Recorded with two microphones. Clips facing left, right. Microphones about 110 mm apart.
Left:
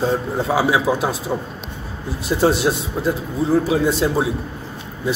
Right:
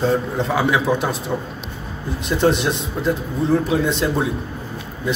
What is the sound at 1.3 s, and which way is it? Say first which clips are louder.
A man's voice: even; 15° left (ahead or behind).